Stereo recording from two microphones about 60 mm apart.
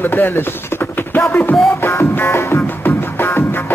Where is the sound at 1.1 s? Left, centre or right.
Left.